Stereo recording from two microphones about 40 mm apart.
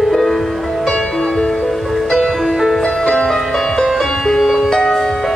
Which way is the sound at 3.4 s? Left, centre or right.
Centre.